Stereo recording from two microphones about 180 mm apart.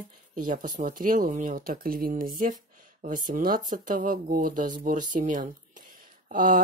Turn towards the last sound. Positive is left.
turn(degrees=-50)  # may be behind; listen again after turning